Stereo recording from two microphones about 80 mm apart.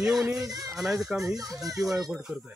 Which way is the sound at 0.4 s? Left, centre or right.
Right.